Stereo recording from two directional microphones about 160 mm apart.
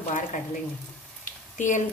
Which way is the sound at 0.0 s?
50° left (ahead or behind).